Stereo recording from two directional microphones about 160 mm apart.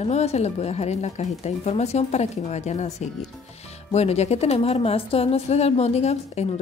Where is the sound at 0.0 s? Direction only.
40° left (ahead or behind).